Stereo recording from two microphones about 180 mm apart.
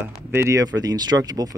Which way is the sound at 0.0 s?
15° right (ahead or behind).